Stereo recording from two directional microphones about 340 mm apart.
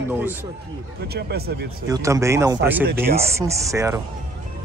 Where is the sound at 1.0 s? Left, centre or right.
Right.